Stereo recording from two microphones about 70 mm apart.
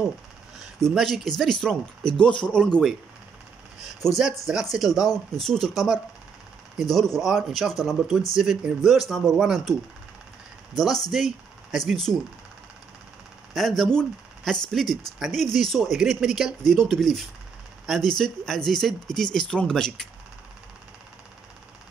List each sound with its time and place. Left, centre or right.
0.7 s speech: centre
4.0 s speech: centre
4.5 s speech: centre
4.8 s speech: left
5.1 s speech: centre
10.8 s speech: centre
13.5 s speech: centre
16.6 s speech: centre